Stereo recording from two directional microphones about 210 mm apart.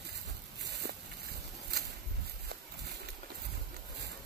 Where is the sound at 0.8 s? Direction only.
50° right (ahead or behind).